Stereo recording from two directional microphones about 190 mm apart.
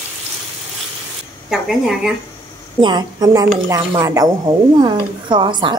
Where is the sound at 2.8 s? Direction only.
20° right (ahead or behind).